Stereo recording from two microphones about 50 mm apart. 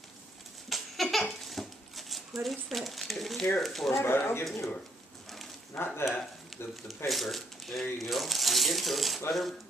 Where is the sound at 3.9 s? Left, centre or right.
Left.